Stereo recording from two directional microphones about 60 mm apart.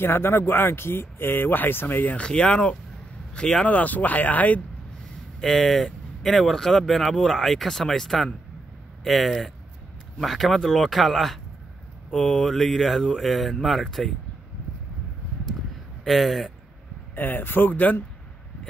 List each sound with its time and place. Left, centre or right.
0.0 s speech: left
2.1 s speech: centre
3.6 s speech: left
5.4 s speech: centre
16.1 s speech: centre
17.1 s speech: left